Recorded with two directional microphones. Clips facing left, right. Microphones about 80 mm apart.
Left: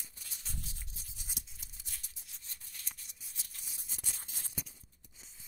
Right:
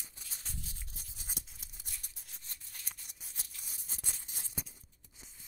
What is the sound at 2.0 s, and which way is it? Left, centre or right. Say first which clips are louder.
Rub: right 1 dB; right.